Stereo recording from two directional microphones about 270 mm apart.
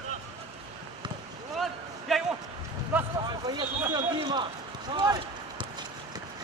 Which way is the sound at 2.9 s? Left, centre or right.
Centre.